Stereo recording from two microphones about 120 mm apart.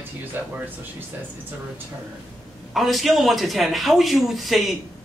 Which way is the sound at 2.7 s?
Centre (ahead or behind).